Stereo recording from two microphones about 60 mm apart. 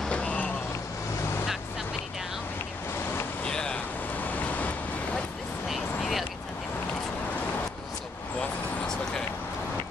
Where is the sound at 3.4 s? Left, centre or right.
Centre.